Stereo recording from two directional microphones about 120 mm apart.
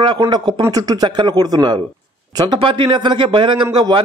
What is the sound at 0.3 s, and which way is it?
A man's voice, 30° right (ahead or behind).